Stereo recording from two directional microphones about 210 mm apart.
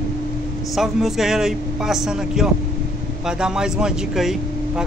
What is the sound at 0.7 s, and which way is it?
Speech, centre (ahead or behind).